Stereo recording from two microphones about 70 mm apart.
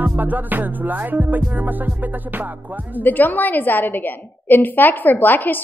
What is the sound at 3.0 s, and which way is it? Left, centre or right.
A woman's voice, left.